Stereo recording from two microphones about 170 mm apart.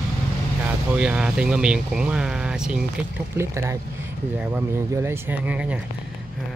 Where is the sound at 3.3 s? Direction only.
15° right (ahead or behind).